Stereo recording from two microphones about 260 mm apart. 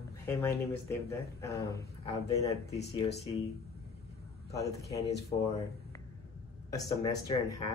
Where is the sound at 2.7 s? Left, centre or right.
Left.